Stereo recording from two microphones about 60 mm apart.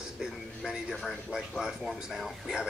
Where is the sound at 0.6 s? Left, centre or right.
Centre.